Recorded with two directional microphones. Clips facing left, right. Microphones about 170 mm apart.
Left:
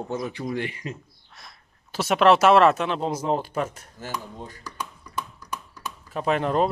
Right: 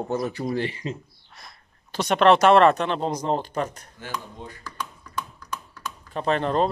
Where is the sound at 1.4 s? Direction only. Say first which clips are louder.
Right 1 dB; centre (ahead or behind).